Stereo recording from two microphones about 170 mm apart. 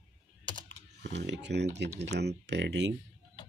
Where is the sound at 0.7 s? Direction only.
90° right.